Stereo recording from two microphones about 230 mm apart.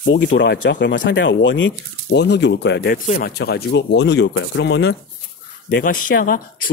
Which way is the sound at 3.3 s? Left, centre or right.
Left.